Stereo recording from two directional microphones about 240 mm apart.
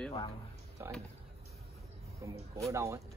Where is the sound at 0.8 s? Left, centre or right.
Centre.